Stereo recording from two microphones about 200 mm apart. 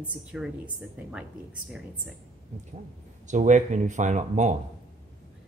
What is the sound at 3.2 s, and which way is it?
Speech, 40° right (ahead or behind).